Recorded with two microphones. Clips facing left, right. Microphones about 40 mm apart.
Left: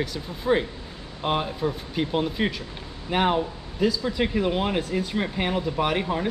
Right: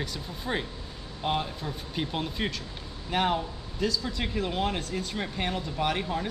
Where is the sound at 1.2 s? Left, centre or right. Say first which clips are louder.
Left 5 dB; centre.